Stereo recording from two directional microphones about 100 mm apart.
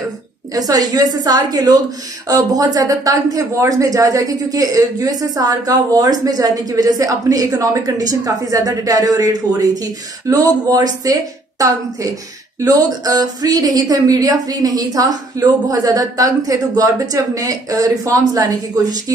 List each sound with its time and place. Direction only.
0.6 s speech: 40° right (ahead or behind)